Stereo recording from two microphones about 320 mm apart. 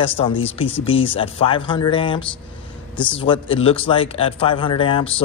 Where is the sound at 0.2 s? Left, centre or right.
Centre.